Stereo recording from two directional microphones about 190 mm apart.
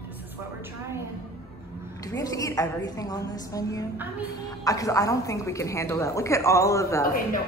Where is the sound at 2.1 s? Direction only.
20° left (ahead or behind).